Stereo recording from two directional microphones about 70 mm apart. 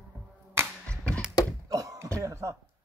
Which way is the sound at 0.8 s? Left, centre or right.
Centre.